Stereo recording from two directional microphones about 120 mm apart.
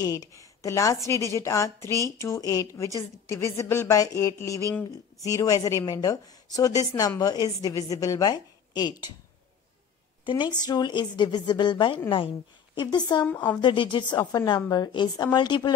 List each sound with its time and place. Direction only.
0.0 s a woman's voice: 30° left (ahead or behind)
10.2 s a woman's voice: 40° left (ahead or behind)